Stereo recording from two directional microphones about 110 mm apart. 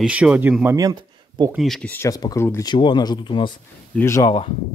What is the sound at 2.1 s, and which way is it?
Speech, 35° left (ahead or behind).